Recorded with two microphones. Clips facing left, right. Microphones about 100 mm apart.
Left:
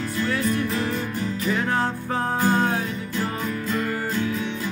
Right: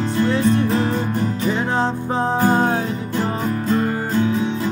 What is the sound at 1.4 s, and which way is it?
Music, 25° right (ahead or behind).